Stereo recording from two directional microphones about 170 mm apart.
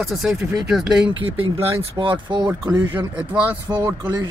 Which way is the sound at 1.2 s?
30° right (ahead or behind).